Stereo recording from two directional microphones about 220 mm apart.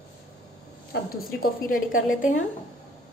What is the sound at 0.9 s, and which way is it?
A woman's voice, 45° left (ahead or behind).